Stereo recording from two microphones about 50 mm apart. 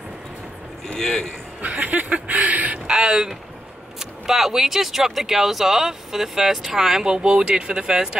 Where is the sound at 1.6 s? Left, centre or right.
Right.